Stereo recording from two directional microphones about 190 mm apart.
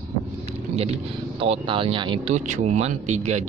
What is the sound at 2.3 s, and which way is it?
Speech, 40° right (ahead or behind).